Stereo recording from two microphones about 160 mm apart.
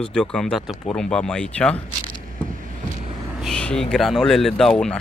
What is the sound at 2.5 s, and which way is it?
Vehicle, 55° right (ahead or behind).